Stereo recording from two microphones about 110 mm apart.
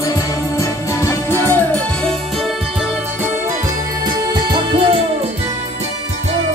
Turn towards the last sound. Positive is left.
turn(degrees=-45)  # may be behind; listen again after turning